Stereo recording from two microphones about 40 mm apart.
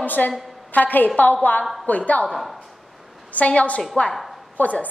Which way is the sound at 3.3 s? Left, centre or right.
Left.